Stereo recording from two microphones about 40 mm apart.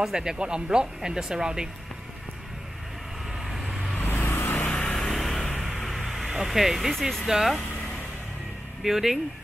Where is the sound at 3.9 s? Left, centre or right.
Left.